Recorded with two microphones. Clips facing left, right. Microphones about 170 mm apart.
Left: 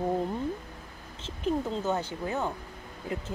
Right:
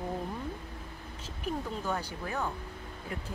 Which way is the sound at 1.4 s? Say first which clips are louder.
Left 6 dB; 20° left (ahead or behind).